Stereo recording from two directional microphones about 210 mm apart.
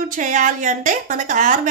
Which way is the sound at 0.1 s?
40° right (ahead or behind).